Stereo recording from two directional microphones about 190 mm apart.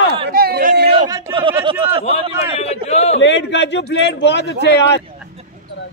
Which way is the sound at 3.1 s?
65° left (ahead or behind).